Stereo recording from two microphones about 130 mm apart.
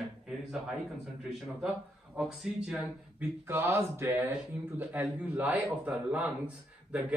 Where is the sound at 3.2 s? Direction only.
20° right (ahead or behind).